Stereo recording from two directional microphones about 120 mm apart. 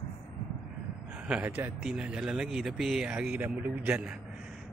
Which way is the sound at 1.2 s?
10° right (ahead or behind).